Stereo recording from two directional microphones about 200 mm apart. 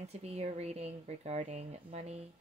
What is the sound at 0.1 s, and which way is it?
Speech, 30° right (ahead or behind).